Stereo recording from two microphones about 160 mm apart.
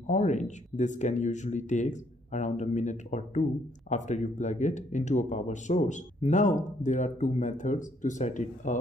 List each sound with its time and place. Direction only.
0.0 s speech: 50° left (ahead or behind)